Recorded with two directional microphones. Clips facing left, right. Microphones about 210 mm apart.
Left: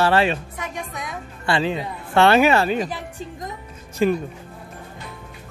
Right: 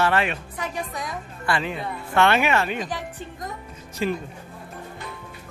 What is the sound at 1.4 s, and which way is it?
Speech, 30° left (ahead or behind).